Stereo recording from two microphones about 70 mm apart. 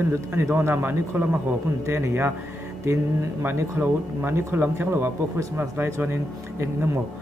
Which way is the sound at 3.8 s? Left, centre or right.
Right.